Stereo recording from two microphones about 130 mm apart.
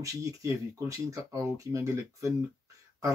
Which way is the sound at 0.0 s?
25° right (ahead or behind).